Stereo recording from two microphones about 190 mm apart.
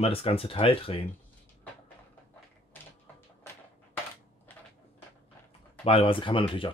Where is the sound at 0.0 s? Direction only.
30° left (ahead or behind).